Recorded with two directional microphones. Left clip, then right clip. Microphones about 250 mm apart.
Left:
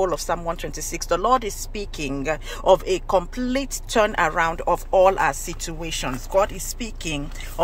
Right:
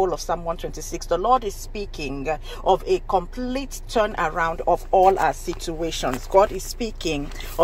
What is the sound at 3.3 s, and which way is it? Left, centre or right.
Speech, centre.